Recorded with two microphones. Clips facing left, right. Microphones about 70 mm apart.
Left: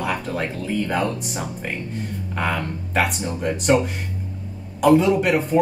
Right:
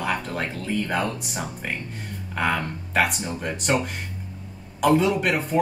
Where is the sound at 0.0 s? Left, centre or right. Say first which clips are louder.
Left 2 dB; centre.